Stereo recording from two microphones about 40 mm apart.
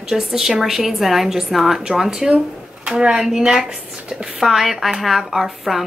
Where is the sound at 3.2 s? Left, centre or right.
Centre.